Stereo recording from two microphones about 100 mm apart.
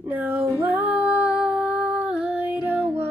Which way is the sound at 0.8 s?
15° right (ahead or behind).